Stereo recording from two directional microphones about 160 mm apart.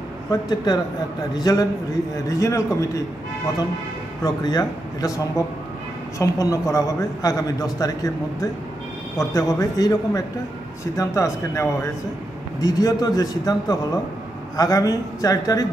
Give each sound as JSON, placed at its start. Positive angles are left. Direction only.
{"t": 0.3, "sound": "a man's voice", "side_deg": 25}
{"t": 4.2, "sound": "a man's voice", "side_deg": 25}
{"t": 6.1, "sound": "a man's voice", "side_deg": 20}